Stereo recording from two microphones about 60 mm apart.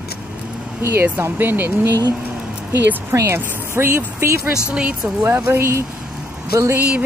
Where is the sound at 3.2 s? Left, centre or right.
Right.